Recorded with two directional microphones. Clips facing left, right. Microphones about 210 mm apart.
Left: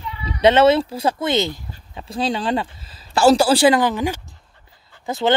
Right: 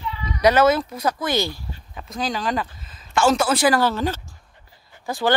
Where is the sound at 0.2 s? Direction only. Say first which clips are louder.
Left 3 dB; 25° left (ahead or behind).